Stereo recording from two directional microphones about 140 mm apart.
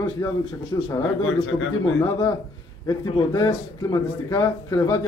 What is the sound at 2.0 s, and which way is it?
A man's voice, 25° left (ahead or behind).